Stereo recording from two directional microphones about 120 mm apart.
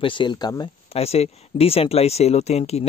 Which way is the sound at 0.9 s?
60° left (ahead or behind).